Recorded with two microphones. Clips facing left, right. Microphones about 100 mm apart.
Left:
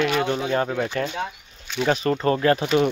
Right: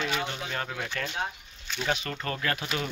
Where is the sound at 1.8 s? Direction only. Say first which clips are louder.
Left 11 dB; 40° left (ahead or behind).